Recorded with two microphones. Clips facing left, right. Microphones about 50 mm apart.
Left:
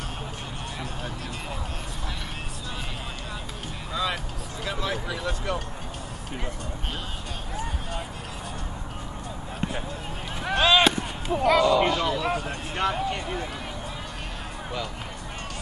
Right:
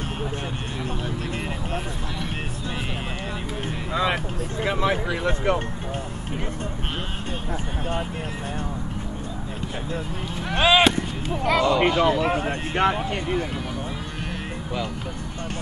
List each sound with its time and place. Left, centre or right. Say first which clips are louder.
3.9 s vehicle: right 5 dB; right
4.6 s speech: right 6 dB; right
10.5 s speech: right 2 dB; centre
11.6 s speech: right 2 dB; centre